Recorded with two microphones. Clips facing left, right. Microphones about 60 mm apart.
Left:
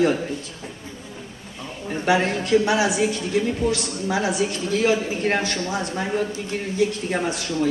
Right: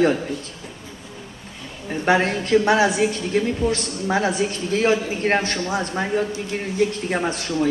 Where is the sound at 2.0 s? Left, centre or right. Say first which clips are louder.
Right 2 dB; right.